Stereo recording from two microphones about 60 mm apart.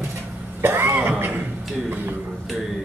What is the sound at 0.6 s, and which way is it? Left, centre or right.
Cough, right.